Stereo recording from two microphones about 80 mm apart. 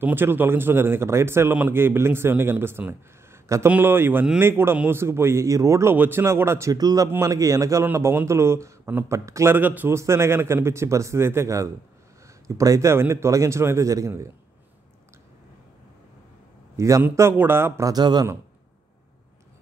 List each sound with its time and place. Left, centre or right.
0.0 s speech: right
2.9 s a sound: right
3.6 s a man's voice: right
5.9 s a man's voice: right
6.7 s a man's voice: right
7.1 s a man's voice: right
7.8 s a man's voice: right
9.6 s speech: right
9.9 s a man's voice: right
16.7 s a man's voice: right
17.8 s speech: right